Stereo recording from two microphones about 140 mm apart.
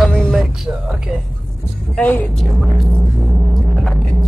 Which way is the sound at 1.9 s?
10° left (ahead or behind).